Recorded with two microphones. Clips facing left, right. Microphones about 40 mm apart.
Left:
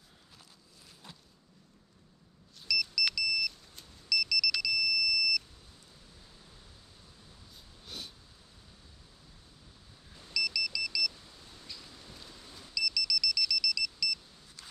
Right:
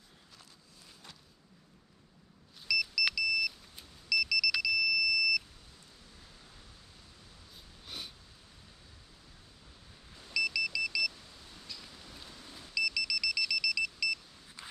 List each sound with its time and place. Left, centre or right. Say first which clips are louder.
2.7 s vehicle: right 1 dB; centre
7.8 s snort: even; centre
10.3 s vehicle: right 2 dB; centre
12.7 s beep: right 1 dB; right